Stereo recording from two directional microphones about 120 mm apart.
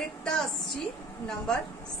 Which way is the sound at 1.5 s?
5° left (ahead or behind).